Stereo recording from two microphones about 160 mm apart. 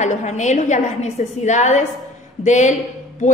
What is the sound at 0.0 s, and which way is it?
A woman's voice, 50° left (ahead or behind).